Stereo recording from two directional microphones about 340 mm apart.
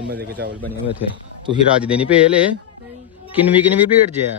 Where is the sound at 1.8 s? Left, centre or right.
Centre.